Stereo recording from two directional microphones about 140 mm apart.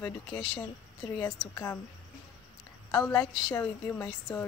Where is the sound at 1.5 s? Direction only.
20° left (ahead or behind).